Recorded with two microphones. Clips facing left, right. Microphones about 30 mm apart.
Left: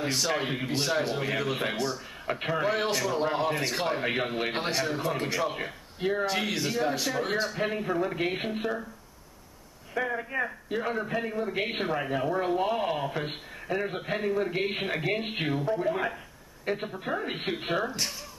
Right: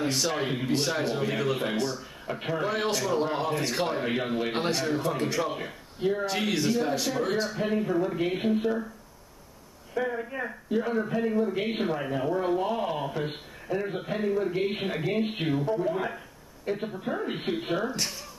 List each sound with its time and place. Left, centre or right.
0.0 s speech: centre
6.2 s speech: centre
9.9 s a woman's voice: centre
11.8 s speech: centre
12.1 s a woman's voice: left; by 15.8 s centre
15.8 s a woman's voice: centre
17.8 s speech: centre